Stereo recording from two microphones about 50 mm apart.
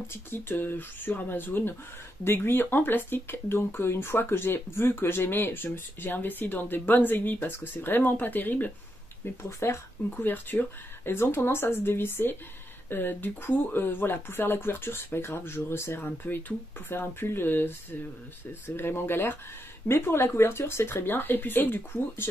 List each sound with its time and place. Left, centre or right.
0.1 s speech: left
9.2 s speech: left
10.1 s speech: left
18.8 s speech: left